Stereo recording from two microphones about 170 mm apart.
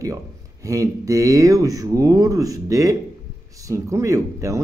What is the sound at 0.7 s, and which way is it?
Speech, 20° right (ahead or behind).